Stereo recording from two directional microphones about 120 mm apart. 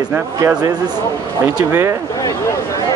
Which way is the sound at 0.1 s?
20° right (ahead or behind).